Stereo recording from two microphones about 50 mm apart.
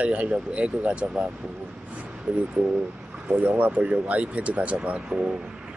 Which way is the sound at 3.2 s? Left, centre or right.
Right.